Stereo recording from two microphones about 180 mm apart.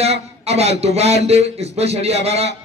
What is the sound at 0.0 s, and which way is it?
Speech, 35° right (ahead or behind).